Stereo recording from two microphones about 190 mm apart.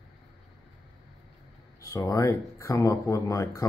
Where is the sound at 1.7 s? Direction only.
15° left (ahead or behind).